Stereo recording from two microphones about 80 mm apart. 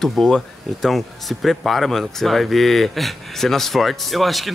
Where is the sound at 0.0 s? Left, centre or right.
Centre.